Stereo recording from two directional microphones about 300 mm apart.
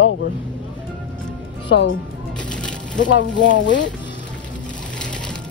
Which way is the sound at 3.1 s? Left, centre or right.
Left.